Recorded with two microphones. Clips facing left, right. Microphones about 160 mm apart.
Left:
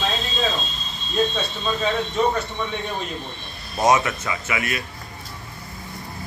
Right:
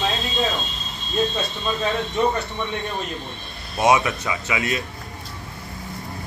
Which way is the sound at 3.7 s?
10° right (ahead or behind).